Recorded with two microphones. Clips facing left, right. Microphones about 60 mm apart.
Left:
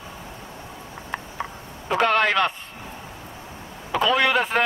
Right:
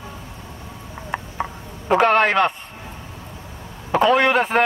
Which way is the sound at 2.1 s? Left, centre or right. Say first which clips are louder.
Right 4 dB; right.